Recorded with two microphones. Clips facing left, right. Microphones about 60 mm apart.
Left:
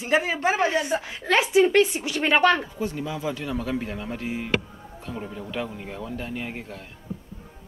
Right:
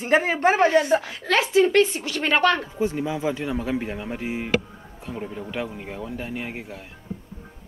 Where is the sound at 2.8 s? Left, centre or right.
Right.